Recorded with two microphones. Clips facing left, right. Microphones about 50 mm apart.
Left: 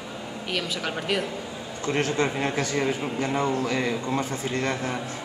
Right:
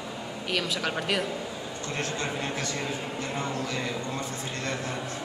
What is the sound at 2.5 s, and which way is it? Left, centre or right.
A man's voice, left.